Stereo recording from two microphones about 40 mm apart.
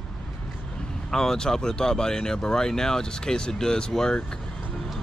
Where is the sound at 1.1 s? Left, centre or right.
Centre.